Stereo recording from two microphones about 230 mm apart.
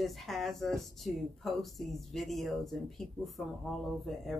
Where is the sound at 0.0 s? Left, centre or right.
Centre.